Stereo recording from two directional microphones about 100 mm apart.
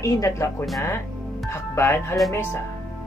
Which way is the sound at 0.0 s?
35° left (ahead or behind).